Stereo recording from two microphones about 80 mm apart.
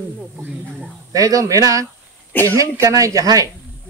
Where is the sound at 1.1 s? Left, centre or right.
Right.